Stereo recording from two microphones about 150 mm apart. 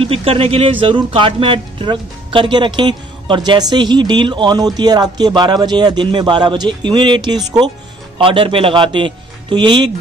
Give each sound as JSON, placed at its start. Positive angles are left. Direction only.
{"t": 0.0, "sound": "speech", "side_deg": -40}